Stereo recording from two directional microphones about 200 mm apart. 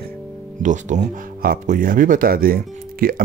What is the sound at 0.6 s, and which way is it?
Speech, 40° right (ahead or behind).